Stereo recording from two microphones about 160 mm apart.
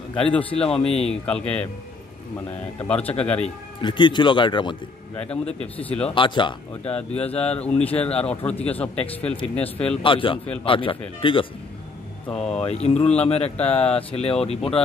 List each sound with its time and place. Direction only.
0.1 s a man's voice: 5° left (ahead or behind)
2.8 s speech: 10° left (ahead or behind)
3.8 s speech: 30° left (ahead or behind)
5.1 s speech: 5° left (ahead or behind)
6.0 s speech: 30° left (ahead or behind)
6.9 s speech: 10° left (ahead or behind)
10.0 s speech: 35° left (ahead or behind)
12.3 s a man's voice: 5° left (ahead or behind)
12.6 s speech: 40° left (ahead or behind)